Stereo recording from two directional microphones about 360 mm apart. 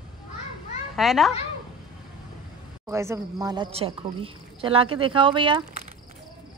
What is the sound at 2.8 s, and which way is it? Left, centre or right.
Speech, centre.